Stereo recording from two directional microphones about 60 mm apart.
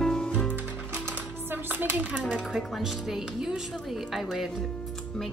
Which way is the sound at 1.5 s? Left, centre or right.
Right.